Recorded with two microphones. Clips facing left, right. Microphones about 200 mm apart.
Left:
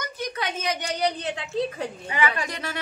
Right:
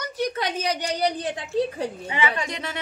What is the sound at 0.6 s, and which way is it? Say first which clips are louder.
Speech: right 2 dB; 35° right (ahead or behind).